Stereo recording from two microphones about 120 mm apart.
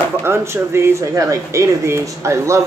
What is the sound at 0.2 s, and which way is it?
Speech, 20° right (ahead or behind).